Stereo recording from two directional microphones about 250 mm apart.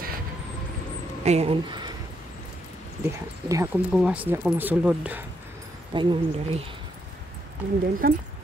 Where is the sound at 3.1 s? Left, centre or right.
Centre.